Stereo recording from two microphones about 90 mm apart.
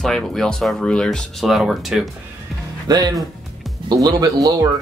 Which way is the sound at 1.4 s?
Centre (ahead or behind).